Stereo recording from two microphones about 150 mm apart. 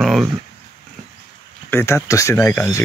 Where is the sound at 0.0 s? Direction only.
Centre (ahead or behind).